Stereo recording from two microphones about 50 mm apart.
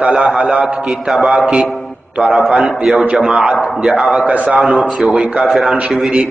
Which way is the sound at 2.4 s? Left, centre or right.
Centre.